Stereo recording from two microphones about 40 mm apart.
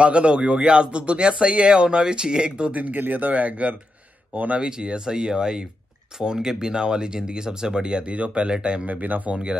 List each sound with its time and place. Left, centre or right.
0.0 s speech: right
2.7 s speech: right
4.6 s speech: right
8.1 s speech: right
8.5 s speech: right
8.8 s speech: right
9.3 s speech: right